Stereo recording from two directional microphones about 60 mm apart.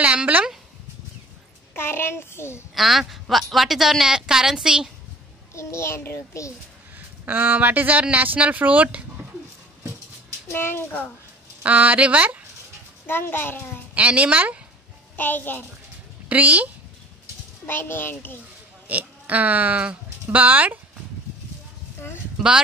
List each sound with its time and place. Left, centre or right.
0.0 s a sound: right
1.7 s a child's voice: left
2.7 s a woman's voice: centre
5.5 s a child's voice: left
7.2 s speech: right
10.5 s a child's voice: left
11.6 s speech: right
13.0 s a child's voice: left
13.9 s speech: right
15.1 s a child's voice: left
16.3 s speech: right
17.6 s a child's voice: left
18.9 s speech: right